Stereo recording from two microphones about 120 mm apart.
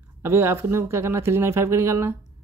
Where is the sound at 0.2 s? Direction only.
20° right (ahead or behind).